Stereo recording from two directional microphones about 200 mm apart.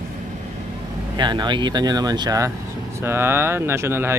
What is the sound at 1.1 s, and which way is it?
Speech, 20° right (ahead or behind).